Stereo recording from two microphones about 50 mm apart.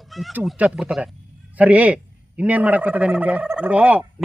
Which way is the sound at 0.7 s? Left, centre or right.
Centre.